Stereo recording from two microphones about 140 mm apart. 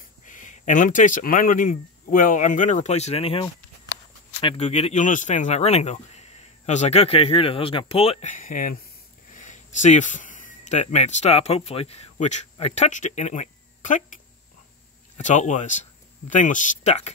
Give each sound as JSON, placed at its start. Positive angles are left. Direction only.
{"t": 0.3, "sound": "speech", "side_deg": 65}
{"t": 4.6, "sound": "speech", "side_deg": 55}
{"t": 8.3, "sound": "speech", "side_deg": 70}